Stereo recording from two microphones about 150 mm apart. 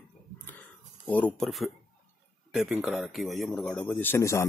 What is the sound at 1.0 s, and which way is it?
A man's voice, 10° left (ahead or behind).